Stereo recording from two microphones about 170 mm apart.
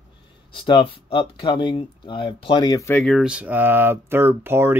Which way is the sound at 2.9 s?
Centre (ahead or behind).